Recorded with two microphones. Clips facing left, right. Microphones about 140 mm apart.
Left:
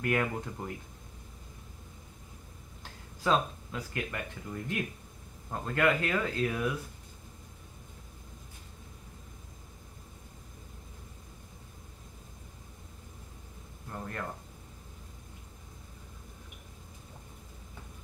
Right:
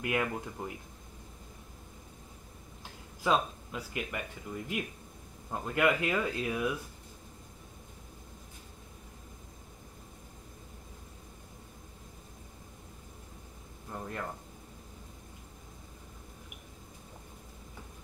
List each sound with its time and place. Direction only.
0.0 s speech: 10° right (ahead or behind)
2.8 s speech: 15° right (ahead or behind)
13.8 s speech: 10° right (ahead or behind)